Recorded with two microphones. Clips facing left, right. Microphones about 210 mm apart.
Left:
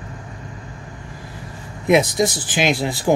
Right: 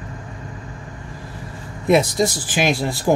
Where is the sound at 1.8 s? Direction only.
15° left (ahead or behind).